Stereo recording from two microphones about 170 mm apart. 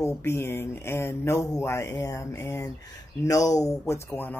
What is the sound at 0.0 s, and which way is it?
Speech, 15° left (ahead or behind).